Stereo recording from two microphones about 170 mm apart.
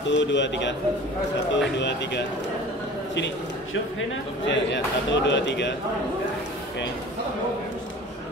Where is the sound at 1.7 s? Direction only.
90° left.